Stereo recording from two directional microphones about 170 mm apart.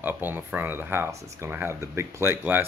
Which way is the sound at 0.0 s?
10° right (ahead or behind).